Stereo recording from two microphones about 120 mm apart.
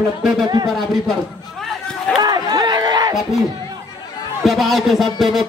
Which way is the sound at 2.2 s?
35° right (ahead or behind).